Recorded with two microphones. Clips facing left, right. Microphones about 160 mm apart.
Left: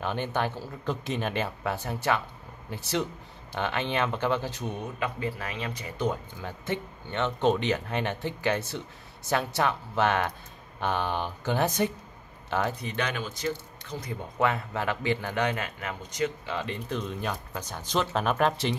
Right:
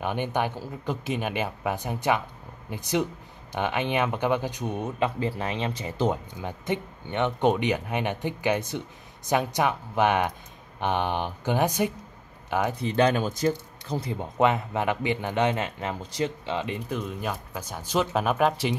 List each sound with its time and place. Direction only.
0.0 s speech: 15° right (ahead or behind)
4.9 s speech: 30° right (ahead or behind); by 12.7 s 15° right (ahead or behind)
12.8 s speech: 35° right (ahead or behind)
13.9 s speech: 30° right (ahead or behind); by 18.8 s 10° right (ahead or behind)